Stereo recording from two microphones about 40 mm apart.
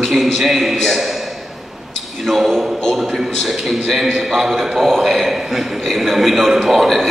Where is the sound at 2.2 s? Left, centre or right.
Centre.